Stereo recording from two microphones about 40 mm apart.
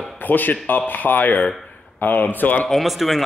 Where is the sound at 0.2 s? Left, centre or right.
Left.